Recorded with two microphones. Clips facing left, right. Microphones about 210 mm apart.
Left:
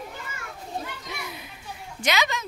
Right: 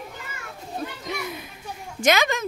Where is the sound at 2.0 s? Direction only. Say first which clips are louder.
Right 5 dB; 50° right (ahead or behind).